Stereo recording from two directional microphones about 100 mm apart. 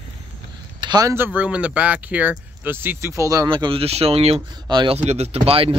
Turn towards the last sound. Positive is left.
turn(degrees=-70)  # may be behind; listen again after turning